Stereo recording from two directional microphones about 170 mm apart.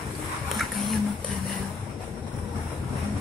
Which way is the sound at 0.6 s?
Centre (ahead or behind).